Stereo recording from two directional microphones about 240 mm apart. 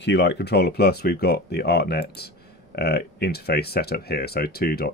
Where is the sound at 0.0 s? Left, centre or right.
Left.